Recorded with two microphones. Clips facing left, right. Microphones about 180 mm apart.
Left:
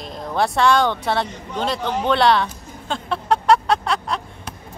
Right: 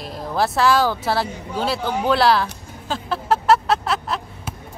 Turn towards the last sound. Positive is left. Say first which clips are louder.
# even
turn(degrees=-5)  # may be behind; listen again after turning